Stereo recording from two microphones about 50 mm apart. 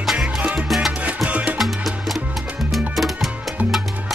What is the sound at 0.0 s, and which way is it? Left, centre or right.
Salsa music, centre.